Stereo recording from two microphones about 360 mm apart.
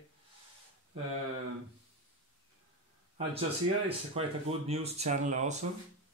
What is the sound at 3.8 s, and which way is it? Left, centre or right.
Speech, centre.